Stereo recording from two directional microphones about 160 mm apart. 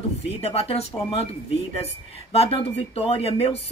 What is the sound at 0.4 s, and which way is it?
Speech, 40° left (ahead or behind).